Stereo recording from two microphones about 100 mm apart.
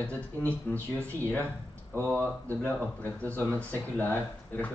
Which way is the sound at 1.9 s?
25° right (ahead or behind).